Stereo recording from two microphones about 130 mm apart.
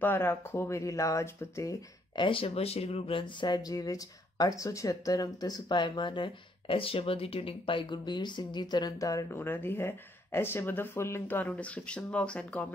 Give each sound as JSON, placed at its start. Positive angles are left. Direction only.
{"t": 0.0, "sound": "speech", "side_deg": 15}
{"t": 2.1, "sound": "speech", "side_deg": 40}